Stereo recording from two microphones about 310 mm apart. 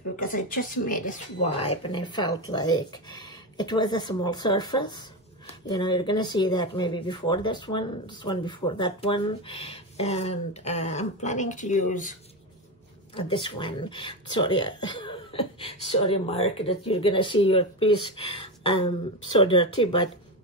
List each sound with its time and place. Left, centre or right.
0.1 s speech: left
13.1 s speech: centre